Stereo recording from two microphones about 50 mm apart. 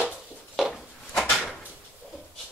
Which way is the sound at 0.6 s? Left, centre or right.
Centre.